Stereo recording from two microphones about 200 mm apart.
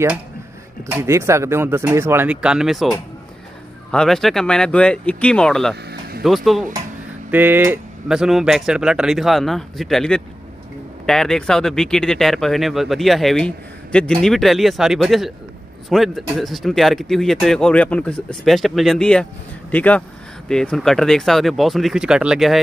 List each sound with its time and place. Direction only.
0.8 s speech: 10° right (ahead or behind)
3.9 s speech: centre (ahead or behind)
5.9 s vehicle: 50° right (ahead or behind)
6.2 s speech: centre (ahead or behind)